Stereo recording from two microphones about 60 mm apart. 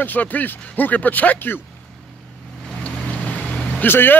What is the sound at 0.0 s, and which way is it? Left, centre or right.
A man's voice, left.